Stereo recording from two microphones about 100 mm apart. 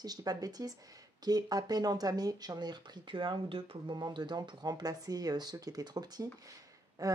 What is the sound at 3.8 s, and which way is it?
Speech, 50° right (ahead or behind).